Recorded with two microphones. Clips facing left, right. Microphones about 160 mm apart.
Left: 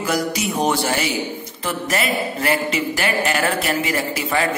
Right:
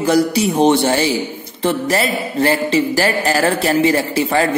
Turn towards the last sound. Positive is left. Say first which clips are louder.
# right 5 dB
turn(degrees=-30)  # may be behind; listen again after turning